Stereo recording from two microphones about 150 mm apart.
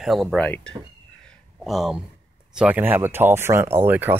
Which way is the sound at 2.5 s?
10° right (ahead or behind).